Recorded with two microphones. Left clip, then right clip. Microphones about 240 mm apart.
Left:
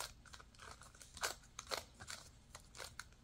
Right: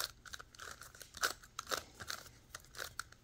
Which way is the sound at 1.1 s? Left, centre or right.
Centre.